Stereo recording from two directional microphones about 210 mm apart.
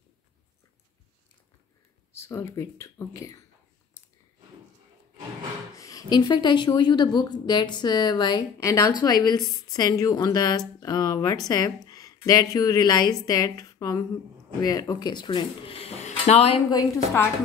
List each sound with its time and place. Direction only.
2.1 s speech: 15° left (ahead or behind)
5.8 s a woman's voice: 15° left (ahead or behind)
16.7 s speech: 10° left (ahead or behind)